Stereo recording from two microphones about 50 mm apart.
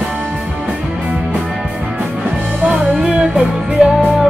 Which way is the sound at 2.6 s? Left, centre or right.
Right.